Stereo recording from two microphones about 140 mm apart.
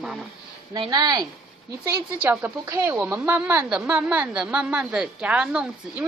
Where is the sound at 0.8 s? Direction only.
25° right (ahead or behind).